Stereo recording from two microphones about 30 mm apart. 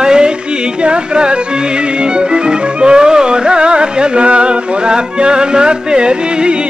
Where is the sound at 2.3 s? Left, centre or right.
Right.